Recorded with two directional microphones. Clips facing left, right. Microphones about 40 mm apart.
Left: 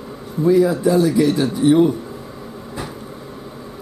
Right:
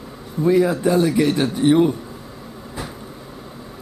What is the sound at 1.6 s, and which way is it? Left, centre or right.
Speech, right.